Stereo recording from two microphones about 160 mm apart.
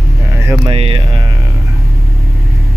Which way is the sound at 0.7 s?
35° right (ahead or behind).